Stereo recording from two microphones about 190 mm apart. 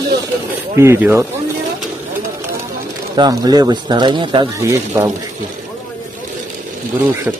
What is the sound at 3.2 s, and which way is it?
Speech, 20° right (ahead or behind).